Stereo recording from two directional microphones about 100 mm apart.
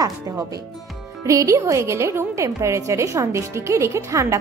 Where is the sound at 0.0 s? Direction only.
35° right (ahead or behind).